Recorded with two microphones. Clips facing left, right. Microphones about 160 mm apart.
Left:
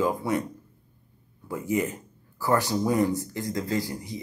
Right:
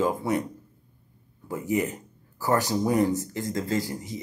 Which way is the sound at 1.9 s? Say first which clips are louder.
Even; 40° right (ahead or behind).